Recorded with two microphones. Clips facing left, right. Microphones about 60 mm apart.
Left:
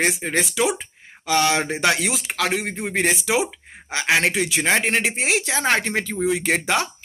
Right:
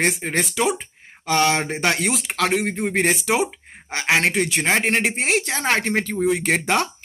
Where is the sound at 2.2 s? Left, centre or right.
Right.